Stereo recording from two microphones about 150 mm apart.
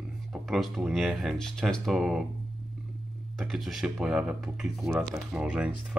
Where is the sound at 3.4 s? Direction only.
Centre (ahead or behind).